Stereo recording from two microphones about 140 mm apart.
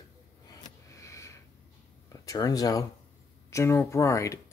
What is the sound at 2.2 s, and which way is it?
Speech, 25° left (ahead or behind).